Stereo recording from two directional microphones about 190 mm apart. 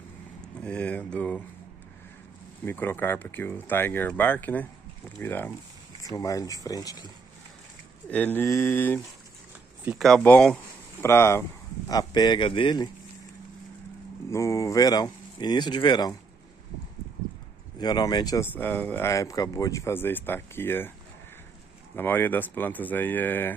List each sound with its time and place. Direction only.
0.6 s speech: 5° left (ahead or behind)
2.6 s speech: 10° left (ahead or behind)
8.1 s speech: 10° left (ahead or behind)
14.3 s speech: 15° left (ahead or behind)
17.7 s speech: 20° left (ahead or behind)
21.9 s speech: 10° left (ahead or behind)